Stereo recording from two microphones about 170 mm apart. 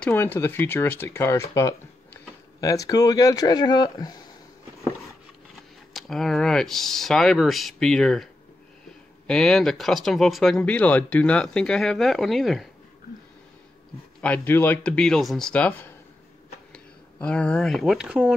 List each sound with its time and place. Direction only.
0.0 s speech: 10° left (ahead or behind)
5.6 s speech: centre (ahead or behind)
9.3 s speech: 5° left (ahead or behind)
14.2 s speech: 10° left (ahead or behind); by 18.3 s 5° right (ahead or behind)